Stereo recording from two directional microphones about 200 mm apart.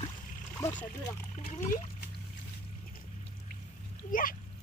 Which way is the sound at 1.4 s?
45° left (ahead or behind).